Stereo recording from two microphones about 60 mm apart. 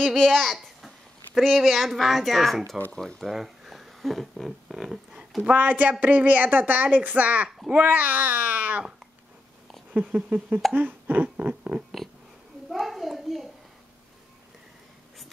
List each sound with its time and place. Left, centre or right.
0.0 s a child's voice: centre
5.4 s a woman's voice: right
7.4 s a child's voice: centre
7.7 s a woman's voice: right
9.9 s a woman's voice: centre
10.7 s speech: right
12.6 s a sound: centre